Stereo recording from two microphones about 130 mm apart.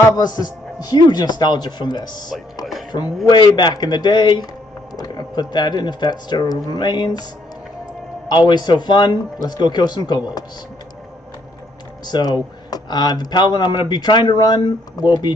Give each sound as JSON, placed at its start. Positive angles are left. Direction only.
{"t": 0.0, "sound": "speech", "side_deg": 30}
{"t": 8.5, "sound": "speech", "side_deg": 35}
{"t": 12.1, "sound": "speech", "side_deg": 30}